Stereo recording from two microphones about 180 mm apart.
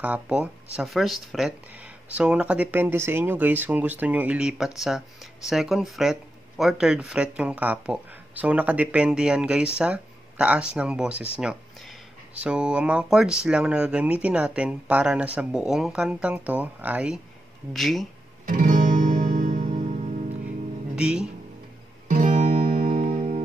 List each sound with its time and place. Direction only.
0.0 s speech: 5° right (ahead or behind)
12.4 s speech: 5° right (ahead or behind)
18.4 s music: 50° right (ahead or behind)
20.9 s music: 5° right (ahead or behind)
22.1 s guitar: 45° right (ahead or behind)
22.8 s music: 40° right (ahead or behind)